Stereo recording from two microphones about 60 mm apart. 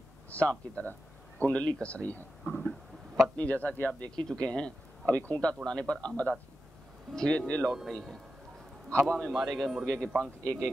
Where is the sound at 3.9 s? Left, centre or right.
Centre.